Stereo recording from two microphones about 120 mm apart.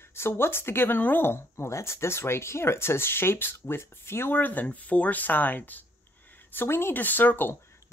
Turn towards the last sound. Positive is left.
turn(degrees=20)  # may be behind; listen again after turning